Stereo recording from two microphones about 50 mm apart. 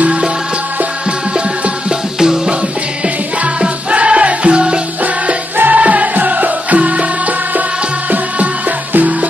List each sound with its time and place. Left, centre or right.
0.0 s music: centre
1.9 s music: centre
3.6 s music: right
5.6 s music: right
8.1 s music: right